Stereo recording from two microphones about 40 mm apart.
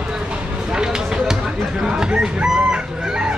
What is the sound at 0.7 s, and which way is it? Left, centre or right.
Chop, centre.